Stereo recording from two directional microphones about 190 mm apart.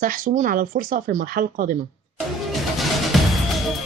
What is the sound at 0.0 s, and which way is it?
Speech, 45° right (ahead or behind).